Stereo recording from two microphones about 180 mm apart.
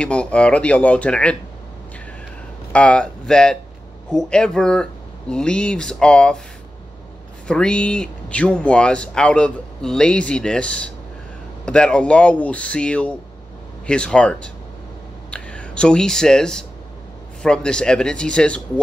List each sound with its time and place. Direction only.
0.0 s speech: 5° left (ahead or behind)
2.7 s speech: 5° left (ahead or behind)
7.4 s speech: 5° left (ahead or behind)